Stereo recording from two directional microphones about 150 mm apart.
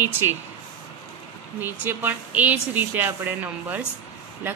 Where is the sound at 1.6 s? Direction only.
15° right (ahead or behind).